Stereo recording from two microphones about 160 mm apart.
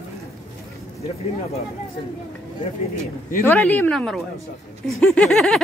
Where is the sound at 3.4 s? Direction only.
10° left (ahead or behind).